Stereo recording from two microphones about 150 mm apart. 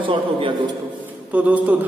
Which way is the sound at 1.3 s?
10° right (ahead or behind).